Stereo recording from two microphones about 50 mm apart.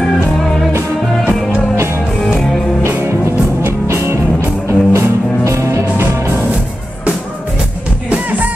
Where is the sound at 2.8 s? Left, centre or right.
Right.